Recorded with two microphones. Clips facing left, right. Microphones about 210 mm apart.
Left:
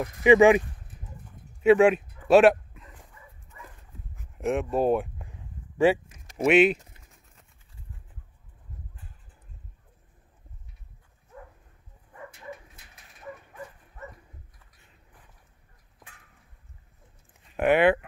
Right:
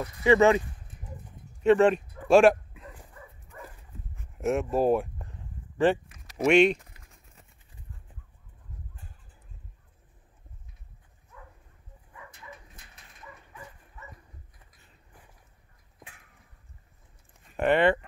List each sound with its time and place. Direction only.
0.0 s speech: 15° left (ahead or behind)
2.2 s dog: centre (ahead or behind)
4.1 s a sound: centre (ahead or behind)
5.9 s speech: 5° left (ahead or behind)
13.2 s dog: 50° left (ahead or behind)
17.6 s speech: 5° left (ahead or behind)